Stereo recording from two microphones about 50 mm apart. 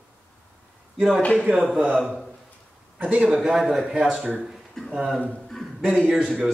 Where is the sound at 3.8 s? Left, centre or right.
Centre.